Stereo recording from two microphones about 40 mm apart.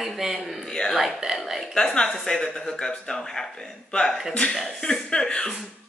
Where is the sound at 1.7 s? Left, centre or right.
Left.